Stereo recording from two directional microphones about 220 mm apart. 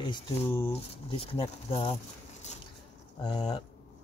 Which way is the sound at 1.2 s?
25° left (ahead or behind).